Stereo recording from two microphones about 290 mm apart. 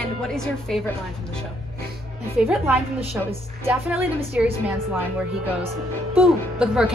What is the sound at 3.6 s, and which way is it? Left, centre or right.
A woman's voice, centre.